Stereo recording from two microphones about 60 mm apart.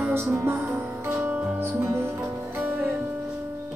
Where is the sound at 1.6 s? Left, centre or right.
Right.